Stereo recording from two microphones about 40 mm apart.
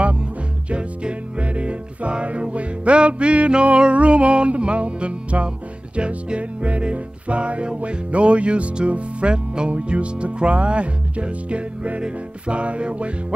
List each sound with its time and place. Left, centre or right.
0.0 s music: right
9.7 s speech: right